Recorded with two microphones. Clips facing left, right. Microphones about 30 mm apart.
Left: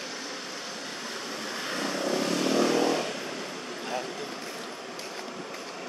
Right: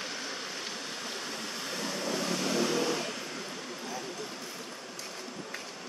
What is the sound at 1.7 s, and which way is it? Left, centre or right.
Vehicle, left.